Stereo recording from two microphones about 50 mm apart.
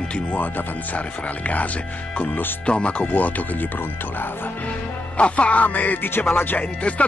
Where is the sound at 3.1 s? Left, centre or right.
Left.